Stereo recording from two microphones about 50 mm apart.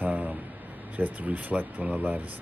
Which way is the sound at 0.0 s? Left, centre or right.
Right.